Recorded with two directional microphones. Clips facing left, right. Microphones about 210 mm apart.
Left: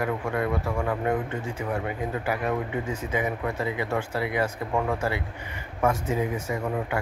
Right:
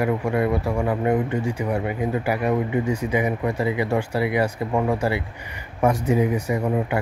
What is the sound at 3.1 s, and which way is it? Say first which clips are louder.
A man's voice: right 2 dB; 15° right (ahead or behind).